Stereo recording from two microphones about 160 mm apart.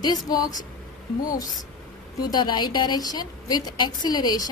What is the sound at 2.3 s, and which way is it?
A woman's voice, 25° left (ahead or behind).